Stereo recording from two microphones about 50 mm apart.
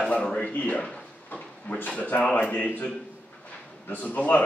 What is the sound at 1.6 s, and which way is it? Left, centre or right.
A man's voice, left.